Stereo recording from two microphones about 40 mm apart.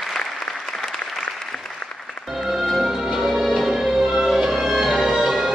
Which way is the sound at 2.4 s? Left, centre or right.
Centre.